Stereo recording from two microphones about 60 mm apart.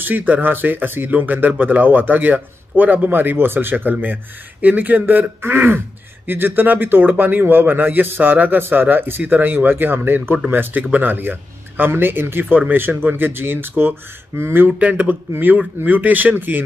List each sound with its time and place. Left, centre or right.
0.0 s speech: right
5.4 s speech: right
6.2 s speech: right
14.8 s speech: right